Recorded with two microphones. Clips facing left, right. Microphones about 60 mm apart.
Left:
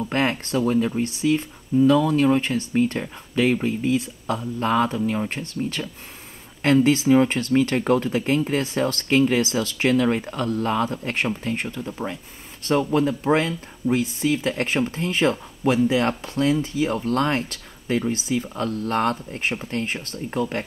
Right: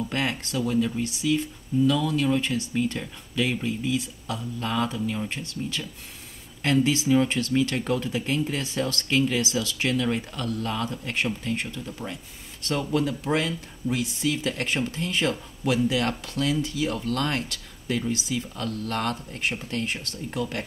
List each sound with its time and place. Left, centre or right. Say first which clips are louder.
0.0 s speech: left 5 dB; left